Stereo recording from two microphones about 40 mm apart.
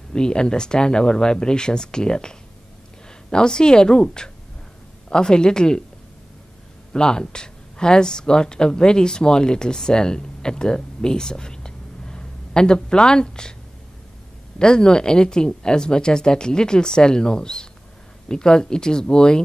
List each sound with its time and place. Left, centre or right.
0.1 s speech: left
6.9 s speech: centre
14.6 s speech: centre